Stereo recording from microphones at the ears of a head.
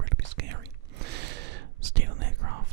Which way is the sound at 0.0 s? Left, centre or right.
Right.